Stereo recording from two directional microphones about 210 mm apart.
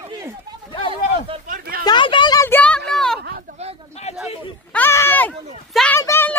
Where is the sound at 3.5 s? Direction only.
40° right (ahead or behind).